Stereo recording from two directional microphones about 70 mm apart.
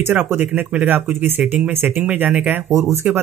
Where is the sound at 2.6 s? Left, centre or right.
Right.